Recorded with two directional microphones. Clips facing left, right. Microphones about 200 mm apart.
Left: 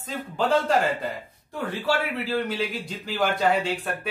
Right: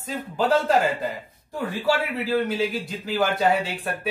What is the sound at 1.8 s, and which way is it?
A man's voice, 5° right (ahead or behind).